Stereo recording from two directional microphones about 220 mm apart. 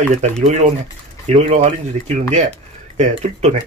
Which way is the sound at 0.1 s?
30° right (ahead or behind).